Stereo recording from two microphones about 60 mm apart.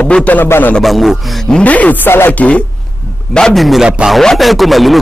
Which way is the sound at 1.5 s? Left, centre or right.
Left.